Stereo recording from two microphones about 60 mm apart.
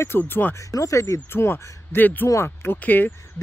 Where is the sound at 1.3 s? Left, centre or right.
Left.